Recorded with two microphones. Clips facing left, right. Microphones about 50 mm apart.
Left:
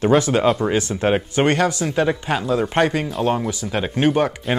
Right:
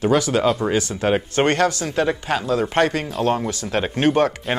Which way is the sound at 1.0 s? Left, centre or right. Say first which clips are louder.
Left 1 dB; centre.